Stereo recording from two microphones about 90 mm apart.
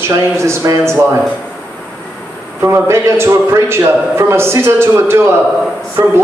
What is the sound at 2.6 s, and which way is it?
A man's voice, 25° right (ahead or behind).